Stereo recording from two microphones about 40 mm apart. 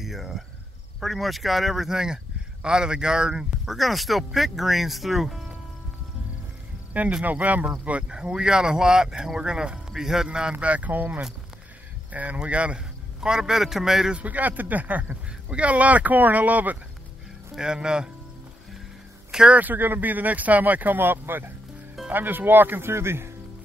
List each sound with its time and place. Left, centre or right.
0.0 s cricket: centre
1.0 s speech: centre
1.9 s speech: centre
3.6 s speech: centre
6.9 s speech: right
8.1 s speech: right
10.5 s speech: right
10.9 s speech: right
12.7 s a man's voice: centre
14.1 s speech: right
17.6 s speech: centre
19.5 s speech: right
22.1 s speech: right
22.8 s speech: right